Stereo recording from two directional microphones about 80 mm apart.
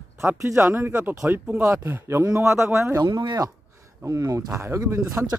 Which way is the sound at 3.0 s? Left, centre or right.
Right.